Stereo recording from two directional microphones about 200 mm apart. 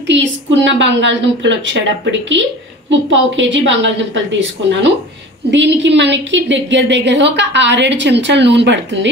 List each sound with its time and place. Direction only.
0.0 s a woman's voice: 65° right (ahead or behind)